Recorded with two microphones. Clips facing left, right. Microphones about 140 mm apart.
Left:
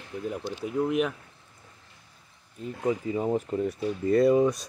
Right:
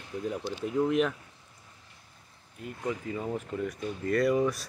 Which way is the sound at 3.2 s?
35° left (ahead or behind).